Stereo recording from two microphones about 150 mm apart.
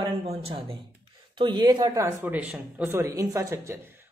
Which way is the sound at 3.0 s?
20° right (ahead or behind).